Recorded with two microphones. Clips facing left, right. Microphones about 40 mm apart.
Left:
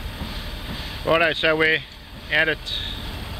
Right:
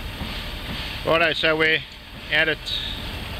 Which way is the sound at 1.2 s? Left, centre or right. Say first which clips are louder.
Left 1 dB; centre.